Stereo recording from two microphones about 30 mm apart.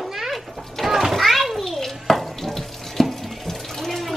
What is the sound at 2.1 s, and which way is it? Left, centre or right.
Water tap, centre.